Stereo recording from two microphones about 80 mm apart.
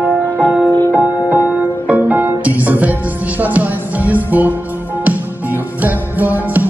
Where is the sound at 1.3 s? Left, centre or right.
Right.